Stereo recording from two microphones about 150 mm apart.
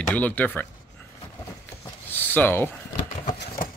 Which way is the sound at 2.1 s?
15° left (ahead or behind).